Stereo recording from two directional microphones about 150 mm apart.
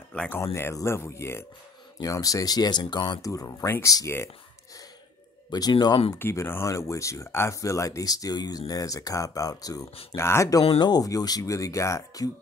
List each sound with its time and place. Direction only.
0.1 s speech: 5° left (ahead or behind)
0.4 s speech: 15° left (ahead or behind)
5.5 s speech: 25° left (ahead or behind)
6.1 s speech: 15° left (ahead or behind)